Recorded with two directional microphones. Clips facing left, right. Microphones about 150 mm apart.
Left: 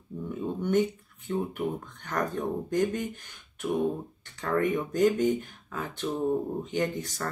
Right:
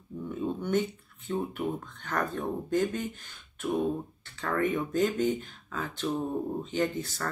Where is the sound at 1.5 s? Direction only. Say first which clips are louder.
Left 1 dB; 15° left (ahead or behind).